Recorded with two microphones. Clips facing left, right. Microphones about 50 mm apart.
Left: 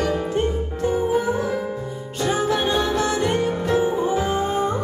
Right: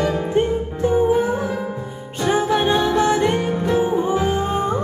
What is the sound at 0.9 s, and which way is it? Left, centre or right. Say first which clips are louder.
Music: right 4 dB; centre.